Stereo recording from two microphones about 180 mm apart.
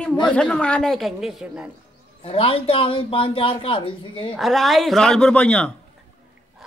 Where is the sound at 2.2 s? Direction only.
30° left (ahead or behind).